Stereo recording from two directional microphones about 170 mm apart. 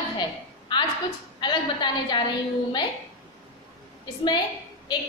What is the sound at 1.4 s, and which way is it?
Speech, 25° left (ahead or behind).